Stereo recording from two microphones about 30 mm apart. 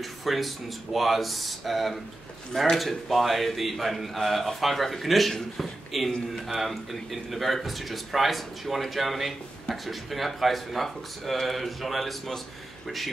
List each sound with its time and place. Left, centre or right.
0.0 s speech: centre